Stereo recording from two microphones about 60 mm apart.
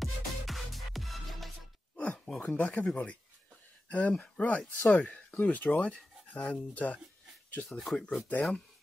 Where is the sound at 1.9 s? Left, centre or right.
Centre.